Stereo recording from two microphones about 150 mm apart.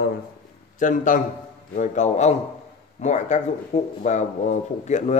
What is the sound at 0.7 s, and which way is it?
A man's voice, 60° left (ahead or behind).